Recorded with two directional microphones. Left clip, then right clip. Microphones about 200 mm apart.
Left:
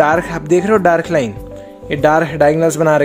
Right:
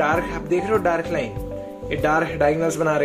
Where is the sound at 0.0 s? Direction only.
50° left (ahead or behind).